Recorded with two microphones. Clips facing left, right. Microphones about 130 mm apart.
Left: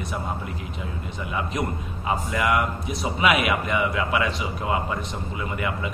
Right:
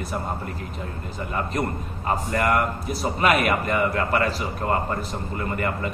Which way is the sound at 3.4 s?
45° right (ahead or behind).